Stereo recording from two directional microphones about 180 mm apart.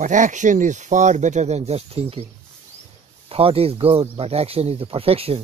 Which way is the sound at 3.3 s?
35° right (ahead or behind).